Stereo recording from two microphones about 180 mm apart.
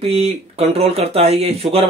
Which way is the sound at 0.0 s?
35° right (ahead or behind).